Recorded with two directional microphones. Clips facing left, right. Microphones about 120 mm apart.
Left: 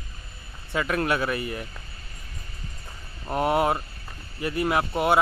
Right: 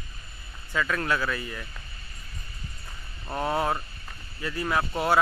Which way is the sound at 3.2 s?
20° left (ahead or behind).